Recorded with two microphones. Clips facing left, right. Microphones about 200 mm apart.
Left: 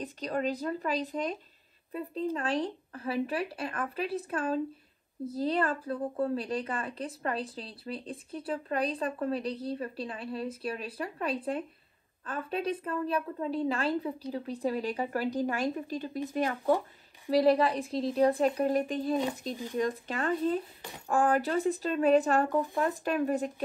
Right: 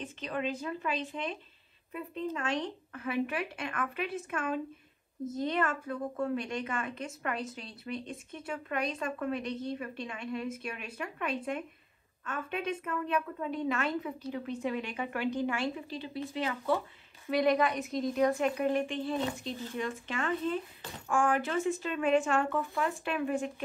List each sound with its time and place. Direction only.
0.0 s a woman's voice: 40° left (ahead or behind)
17.3 s a woman's voice: 30° left (ahead or behind)
19.5 s speech: 15° left (ahead or behind)
19.8 s a woman's voice: 35° left (ahead or behind)